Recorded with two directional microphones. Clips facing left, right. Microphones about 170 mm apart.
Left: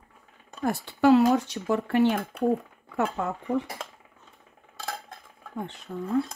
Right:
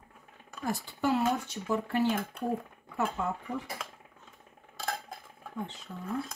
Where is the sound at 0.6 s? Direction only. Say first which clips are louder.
Left 7 dB; 70° left (ahead or behind).